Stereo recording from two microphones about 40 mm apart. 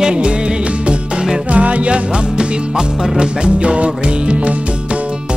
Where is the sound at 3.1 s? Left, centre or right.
Right.